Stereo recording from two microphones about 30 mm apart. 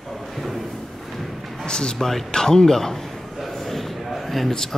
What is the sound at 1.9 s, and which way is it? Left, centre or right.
Speech, centre.